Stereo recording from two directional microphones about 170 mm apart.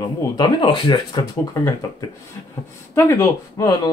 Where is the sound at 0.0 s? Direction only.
25° left (ahead or behind).